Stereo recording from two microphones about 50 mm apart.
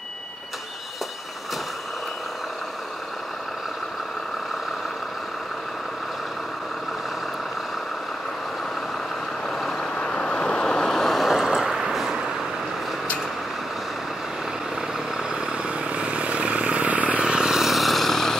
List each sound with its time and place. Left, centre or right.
9.5 s vehicle: centre
9.8 s vehicle: centre
14.8 s vehicle: centre
15.9 s vehicle: right
17.2 s vehicle: centre